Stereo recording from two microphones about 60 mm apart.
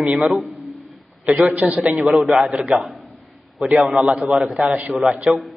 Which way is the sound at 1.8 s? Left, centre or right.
Centre.